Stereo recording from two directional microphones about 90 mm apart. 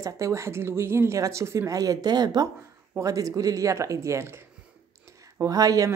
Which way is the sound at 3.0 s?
40° right (ahead or behind).